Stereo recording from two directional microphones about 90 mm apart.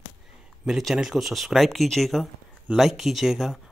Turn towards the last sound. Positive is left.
turn(degrees=-5)  # may be behind; listen again after turning